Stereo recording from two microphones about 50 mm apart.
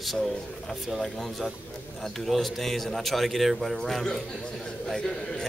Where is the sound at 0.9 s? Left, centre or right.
Centre.